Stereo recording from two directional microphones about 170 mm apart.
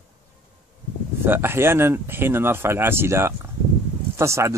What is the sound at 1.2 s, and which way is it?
Speech, 15° right (ahead or behind).